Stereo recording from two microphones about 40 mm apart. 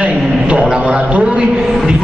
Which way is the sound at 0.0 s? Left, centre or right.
Right.